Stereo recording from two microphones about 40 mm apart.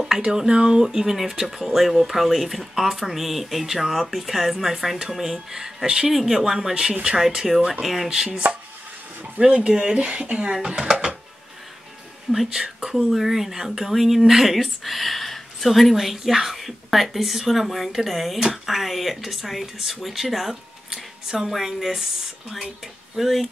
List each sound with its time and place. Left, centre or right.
0.1 s speech: centre
1.7 s speech: centre
7.2 s speech: centre
9.6 s speech: right
12.3 s speech: centre
23.1 s speech: centre